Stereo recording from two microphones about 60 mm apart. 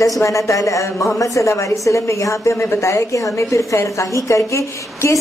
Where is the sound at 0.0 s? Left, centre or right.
Left.